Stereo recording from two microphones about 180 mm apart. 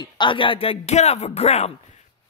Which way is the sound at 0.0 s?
25° left (ahead or behind).